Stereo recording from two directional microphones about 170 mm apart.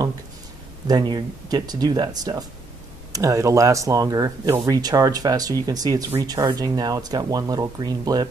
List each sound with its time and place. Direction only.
0.8 s speech: 25° right (ahead or behind)